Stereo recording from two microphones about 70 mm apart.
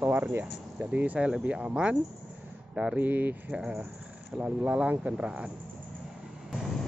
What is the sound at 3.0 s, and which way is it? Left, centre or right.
Speech, right.